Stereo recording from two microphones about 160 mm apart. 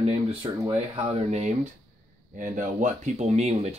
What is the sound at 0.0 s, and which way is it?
Speech, 35° right (ahead or behind).